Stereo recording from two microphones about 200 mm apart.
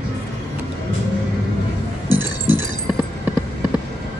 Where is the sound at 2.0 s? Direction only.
80° right.